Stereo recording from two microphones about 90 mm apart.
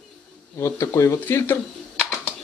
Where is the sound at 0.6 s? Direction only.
30° left (ahead or behind).